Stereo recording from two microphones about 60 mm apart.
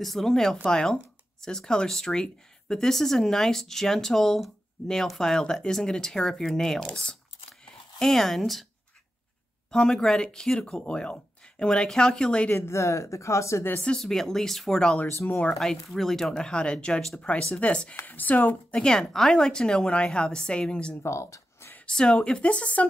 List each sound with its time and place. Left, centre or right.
0.0 s speech: centre
8.0 s speech: centre
9.7 s speech: centre
12.5 s speech: left
13.9 s speech: centre
15.2 s speech: left
15.5 s speech: centre; by 18.8 s left
18.8 s speech: centre
21.0 s speech: left
21.8 s speech: centre